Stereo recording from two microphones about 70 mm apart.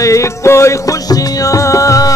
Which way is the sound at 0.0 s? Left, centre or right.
Left.